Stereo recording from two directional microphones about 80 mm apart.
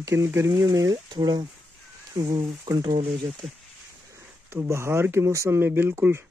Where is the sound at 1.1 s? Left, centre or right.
Right.